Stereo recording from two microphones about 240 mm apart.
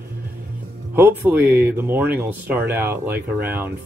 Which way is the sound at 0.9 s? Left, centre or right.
Centre.